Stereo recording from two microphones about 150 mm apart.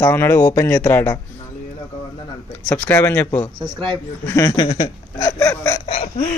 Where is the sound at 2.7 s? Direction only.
15° left (ahead or behind).